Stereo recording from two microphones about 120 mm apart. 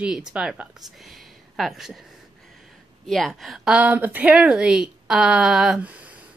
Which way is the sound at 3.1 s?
Centre (ahead or behind).